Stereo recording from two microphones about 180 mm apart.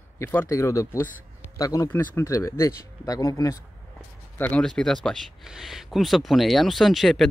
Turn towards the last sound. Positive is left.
turn(degrees=0)  # may be behind; listen again after turning